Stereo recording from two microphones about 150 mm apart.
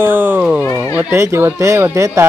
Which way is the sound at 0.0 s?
15° right (ahead or behind).